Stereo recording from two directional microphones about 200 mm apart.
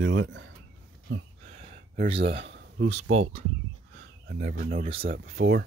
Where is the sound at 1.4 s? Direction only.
35° right (ahead or behind).